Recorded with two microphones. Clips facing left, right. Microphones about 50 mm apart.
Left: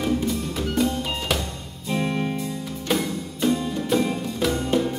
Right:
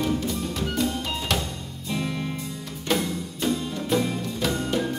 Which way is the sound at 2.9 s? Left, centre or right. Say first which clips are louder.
Left 1 dB; centre.